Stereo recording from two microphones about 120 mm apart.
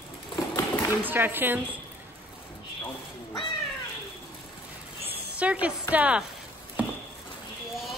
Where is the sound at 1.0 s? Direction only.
15° right (ahead or behind).